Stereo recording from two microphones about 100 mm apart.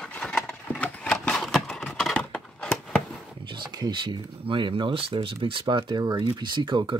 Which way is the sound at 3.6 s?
50° right (ahead or behind).